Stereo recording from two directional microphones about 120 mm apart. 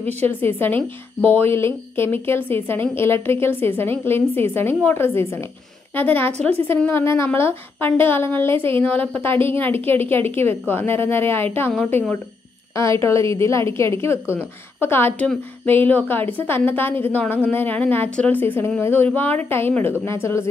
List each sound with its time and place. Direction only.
0.3 s a woman's voice: 15° left (ahead or behind)
8.5 s a woman's voice: 50° right (ahead or behind)
8.8 s a woman's voice: 10° left (ahead or behind)
12.7 s a woman's voice: 25° left (ahead or behind)